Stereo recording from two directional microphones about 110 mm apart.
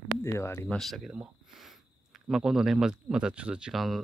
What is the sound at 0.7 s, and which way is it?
Speech, centre (ahead or behind).